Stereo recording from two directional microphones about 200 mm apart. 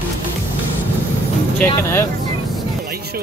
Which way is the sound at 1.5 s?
10° left (ahead or behind).